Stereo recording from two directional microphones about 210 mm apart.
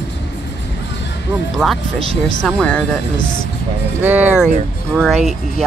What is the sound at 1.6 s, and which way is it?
Speech, centre (ahead or behind).